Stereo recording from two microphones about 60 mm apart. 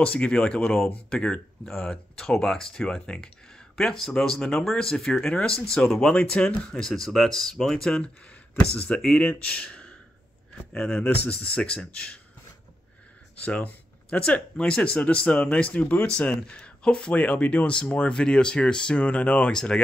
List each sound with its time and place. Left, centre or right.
0.0 s speech: left
6.9 s speech: centre
8.5 s speech: centre
13.4 s speech: left